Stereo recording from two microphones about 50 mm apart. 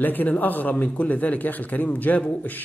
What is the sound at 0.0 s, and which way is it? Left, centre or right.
A man's voice, left.